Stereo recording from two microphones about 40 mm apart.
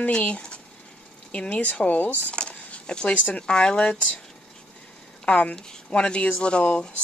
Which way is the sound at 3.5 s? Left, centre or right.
Left.